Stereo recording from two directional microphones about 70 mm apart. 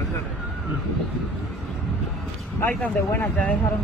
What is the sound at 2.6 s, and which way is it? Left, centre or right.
Speech, left.